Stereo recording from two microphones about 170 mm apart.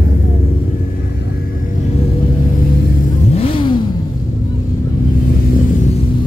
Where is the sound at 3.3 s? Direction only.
35° left (ahead or behind).